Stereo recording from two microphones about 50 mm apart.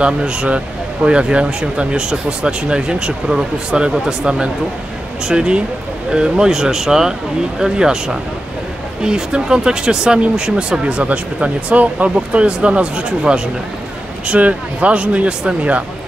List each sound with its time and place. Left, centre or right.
0.0 s speech: centre